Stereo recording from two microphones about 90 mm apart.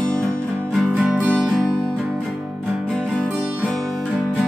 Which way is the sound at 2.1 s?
Centre (ahead or behind).